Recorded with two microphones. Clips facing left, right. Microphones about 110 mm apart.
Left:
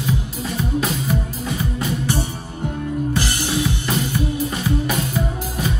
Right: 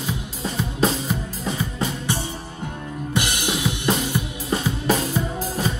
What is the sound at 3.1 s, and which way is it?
Drum kit, 20° right (ahead or behind).